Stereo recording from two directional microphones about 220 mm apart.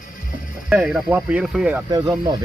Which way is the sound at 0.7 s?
5° right (ahead or behind).